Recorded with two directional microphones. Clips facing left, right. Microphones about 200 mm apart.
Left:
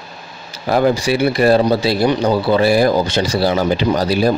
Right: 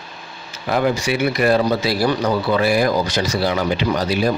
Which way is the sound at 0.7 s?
35° left (ahead or behind).